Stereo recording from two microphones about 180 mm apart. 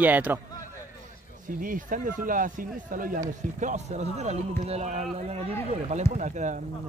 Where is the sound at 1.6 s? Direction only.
50° right (ahead or behind).